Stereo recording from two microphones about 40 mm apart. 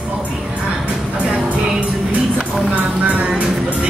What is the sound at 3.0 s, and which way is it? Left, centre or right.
Music, right.